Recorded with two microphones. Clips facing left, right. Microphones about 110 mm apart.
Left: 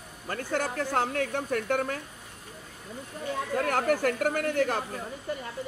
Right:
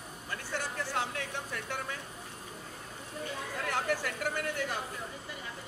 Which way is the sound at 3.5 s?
50° left (ahead or behind).